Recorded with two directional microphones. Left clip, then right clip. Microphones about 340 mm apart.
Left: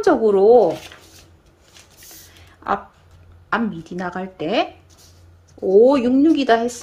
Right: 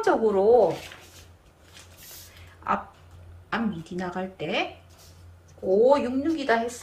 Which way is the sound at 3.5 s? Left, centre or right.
Centre.